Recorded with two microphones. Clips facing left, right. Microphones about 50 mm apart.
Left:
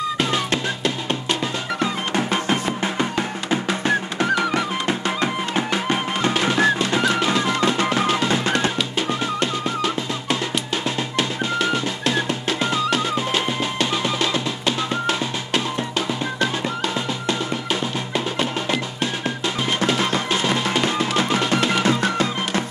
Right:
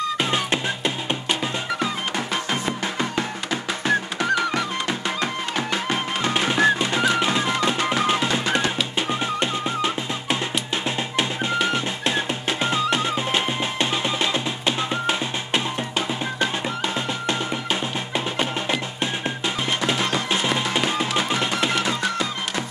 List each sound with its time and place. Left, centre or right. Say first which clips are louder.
0.2 s music: left 1 dB; centre
2.1 s music: left 4 dB; centre
9.4 s music: left 1 dB; centre
11.1 s music: even; centre
18.1 s music: left 1 dB; centre
20.7 s music: left 2 dB; centre